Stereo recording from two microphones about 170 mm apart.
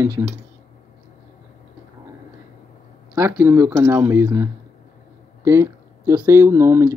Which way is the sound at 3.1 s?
15° right (ahead or behind).